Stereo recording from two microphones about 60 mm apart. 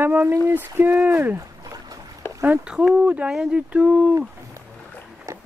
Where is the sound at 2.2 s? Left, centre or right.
Left.